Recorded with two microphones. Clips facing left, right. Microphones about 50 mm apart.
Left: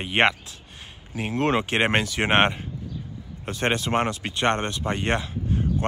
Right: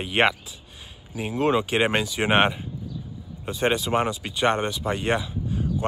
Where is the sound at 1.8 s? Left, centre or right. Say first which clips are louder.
Even; left.